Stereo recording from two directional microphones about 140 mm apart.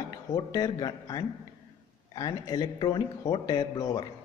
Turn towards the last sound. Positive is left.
turn(degrees=25)  # may be behind; listen again after turning